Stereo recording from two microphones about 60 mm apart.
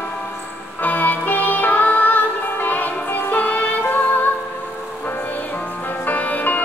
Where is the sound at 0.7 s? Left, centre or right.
Left.